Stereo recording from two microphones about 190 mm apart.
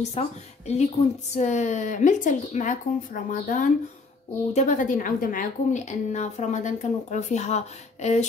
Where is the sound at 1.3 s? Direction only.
40° left (ahead or behind).